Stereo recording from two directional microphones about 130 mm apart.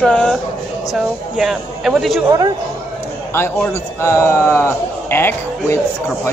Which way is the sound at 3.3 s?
20° left (ahead or behind).